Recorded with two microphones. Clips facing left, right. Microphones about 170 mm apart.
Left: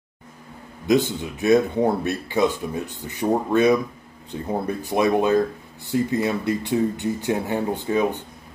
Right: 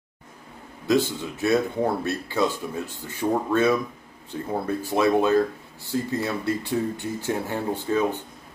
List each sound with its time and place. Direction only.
0.8 s speech: 15° left (ahead or behind)